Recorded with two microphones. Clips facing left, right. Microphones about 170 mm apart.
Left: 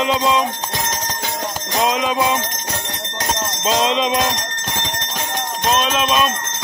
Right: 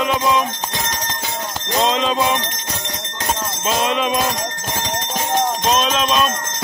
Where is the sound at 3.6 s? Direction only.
20° left (ahead or behind).